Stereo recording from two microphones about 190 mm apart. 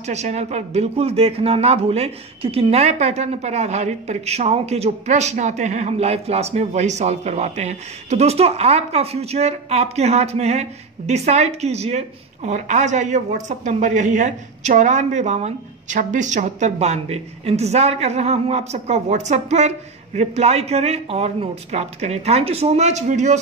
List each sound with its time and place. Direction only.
0.0 s speech: 35° right (ahead or behind)